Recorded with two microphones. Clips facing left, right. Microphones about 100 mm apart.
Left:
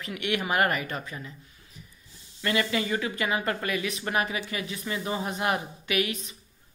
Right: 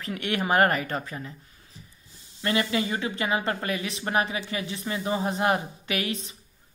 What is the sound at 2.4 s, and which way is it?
A woman's voice, 30° right (ahead or behind).